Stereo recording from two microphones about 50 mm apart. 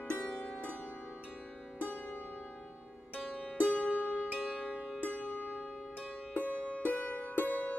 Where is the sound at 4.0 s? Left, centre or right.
Left.